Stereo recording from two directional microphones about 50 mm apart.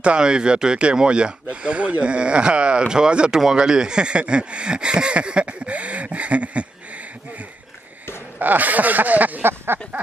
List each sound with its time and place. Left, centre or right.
0.0 s speech: centre
8.4 s speech: right
9.4 s a sound: right